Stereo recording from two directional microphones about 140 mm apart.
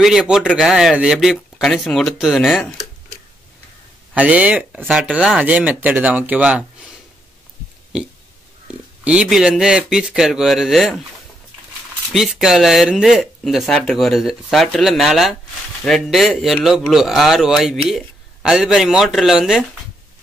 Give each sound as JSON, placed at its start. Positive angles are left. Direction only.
{"t": 0.0, "sound": "speech", "side_deg": -5}
{"t": 4.1, "sound": "speech", "side_deg": -10}
{"t": 9.0, "sound": "speech", "side_deg": -10}
{"t": 12.1, "sound": "speech", "side_deg": -5}